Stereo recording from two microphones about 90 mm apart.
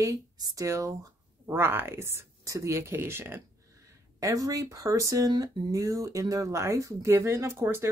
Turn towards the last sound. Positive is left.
turn(degrees=-30)  # may be behind; listen again after turning